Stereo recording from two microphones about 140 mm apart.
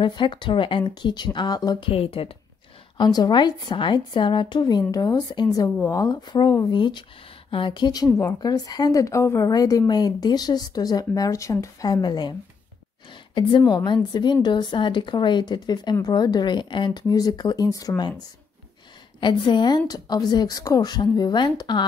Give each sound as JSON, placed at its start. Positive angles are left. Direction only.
{"t": 0.0, "sound": "speech", "side_deg": 35}
{"t": 1.9, "sound": "speech", "side_deg": 40}
{"t": 3.0, "sound": "a woman's voice", "side_deg": 30}
{"t": 19.1, "sound": "a woman's voice", "side_deg": 35}